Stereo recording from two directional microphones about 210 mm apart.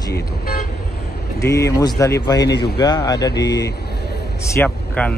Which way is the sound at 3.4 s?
50° left (ahead or behind).